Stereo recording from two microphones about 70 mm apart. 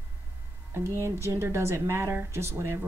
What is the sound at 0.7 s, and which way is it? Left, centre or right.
Speech, right.